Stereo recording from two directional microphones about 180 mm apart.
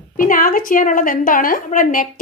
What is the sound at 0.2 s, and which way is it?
A woman's voice, 50° left (ahead or behind).